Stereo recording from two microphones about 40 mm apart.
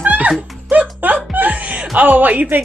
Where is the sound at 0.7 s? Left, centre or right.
Right.